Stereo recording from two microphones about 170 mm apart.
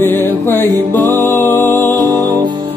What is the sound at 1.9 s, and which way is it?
Music, 20° right (ahead or behind).